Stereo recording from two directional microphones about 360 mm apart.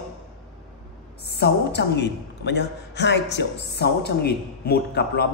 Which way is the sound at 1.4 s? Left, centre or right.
Left.